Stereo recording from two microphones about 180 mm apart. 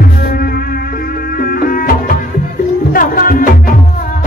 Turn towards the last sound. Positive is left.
turn(degrees=50)  # may be behind; listen again after turning